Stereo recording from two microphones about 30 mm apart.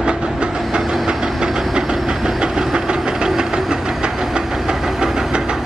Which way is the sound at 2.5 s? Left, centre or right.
Centre.